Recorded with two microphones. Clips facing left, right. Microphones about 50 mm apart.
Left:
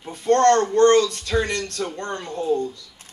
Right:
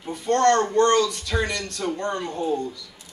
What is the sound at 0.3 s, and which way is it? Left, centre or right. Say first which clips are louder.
Speech: left 4 dB; left.